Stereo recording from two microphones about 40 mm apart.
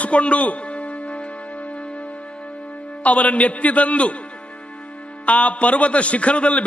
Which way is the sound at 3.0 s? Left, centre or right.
Left.